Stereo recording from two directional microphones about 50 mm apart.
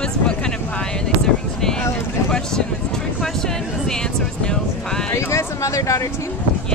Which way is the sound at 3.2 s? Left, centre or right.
Centre.